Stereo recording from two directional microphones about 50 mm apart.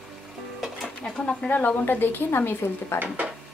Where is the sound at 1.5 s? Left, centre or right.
Left.